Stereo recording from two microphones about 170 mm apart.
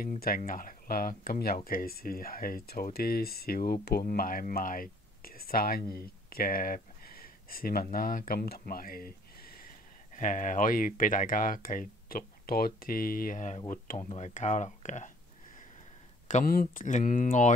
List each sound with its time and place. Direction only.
0.4 s speech: 55° left (ahead or behind)
16.4 s speech: 55° left (ahead or behind)